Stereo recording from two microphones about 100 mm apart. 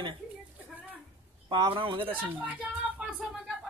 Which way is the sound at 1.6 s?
55° right (ahead or behind).